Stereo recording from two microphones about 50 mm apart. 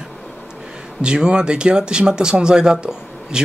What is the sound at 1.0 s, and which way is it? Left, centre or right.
Speech, centre.